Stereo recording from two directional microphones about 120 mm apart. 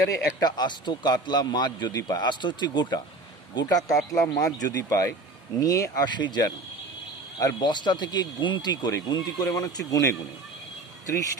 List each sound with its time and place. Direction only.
0.4 s speech: 35° left (ahead or behind)